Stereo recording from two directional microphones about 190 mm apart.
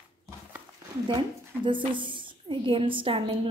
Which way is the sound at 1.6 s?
25° right (ahead or behind).